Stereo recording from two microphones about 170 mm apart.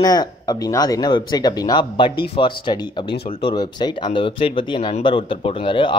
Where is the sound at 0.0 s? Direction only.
20° left (ahead or behind).